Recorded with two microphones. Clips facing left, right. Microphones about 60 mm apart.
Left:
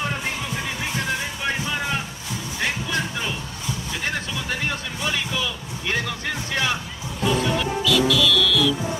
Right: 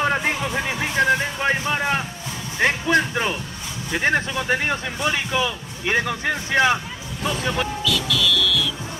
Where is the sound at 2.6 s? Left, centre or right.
Right.